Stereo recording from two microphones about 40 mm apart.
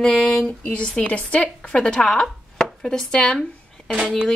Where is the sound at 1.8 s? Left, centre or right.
Left.